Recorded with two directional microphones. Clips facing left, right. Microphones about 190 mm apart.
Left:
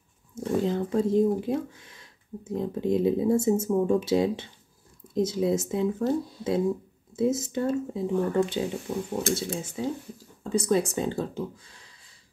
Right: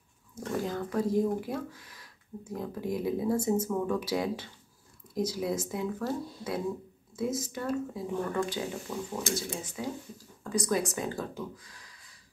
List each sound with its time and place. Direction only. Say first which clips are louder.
0.3 s speech: left 7 dB; 25° left (ahead or behind)